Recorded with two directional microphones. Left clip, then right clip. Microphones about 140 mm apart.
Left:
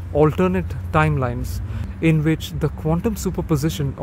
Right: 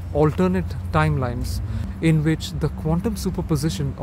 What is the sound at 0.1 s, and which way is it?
Speech, 20° left (ahead or behind).